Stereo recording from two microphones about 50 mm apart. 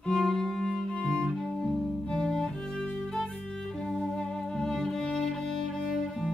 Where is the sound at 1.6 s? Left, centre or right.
Centre.